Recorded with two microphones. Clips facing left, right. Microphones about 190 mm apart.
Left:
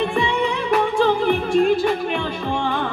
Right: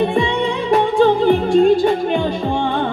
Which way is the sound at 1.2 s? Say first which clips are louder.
Right 5 dB; 30° right (ahead or behind).